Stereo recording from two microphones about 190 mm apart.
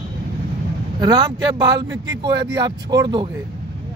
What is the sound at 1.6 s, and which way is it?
Speech, 20° right (ahead or behind).